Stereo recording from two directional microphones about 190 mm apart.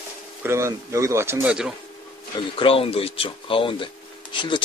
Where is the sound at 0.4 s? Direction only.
15° right (ahead or behind).